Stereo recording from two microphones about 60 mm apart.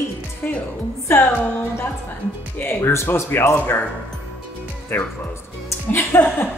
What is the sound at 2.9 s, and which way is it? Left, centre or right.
Speech, left.